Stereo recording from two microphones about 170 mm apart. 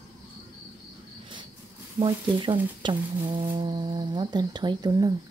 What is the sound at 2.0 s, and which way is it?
Speech, 30° right (ahead or behind).